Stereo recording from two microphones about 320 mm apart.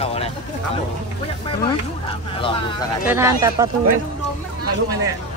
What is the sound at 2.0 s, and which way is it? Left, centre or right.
Speech, centre.